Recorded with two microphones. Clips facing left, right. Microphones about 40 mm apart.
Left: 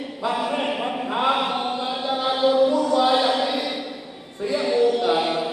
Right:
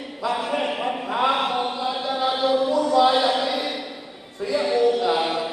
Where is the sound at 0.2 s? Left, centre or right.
Left.